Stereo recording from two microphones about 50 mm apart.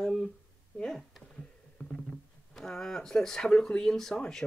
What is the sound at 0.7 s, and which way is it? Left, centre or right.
Speech, left.